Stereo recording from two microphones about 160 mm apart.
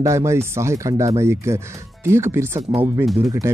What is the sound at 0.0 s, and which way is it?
Speech, 20° right (ahead or behind).